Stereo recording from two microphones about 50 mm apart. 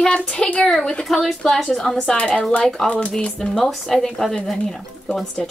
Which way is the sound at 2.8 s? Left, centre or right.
Left.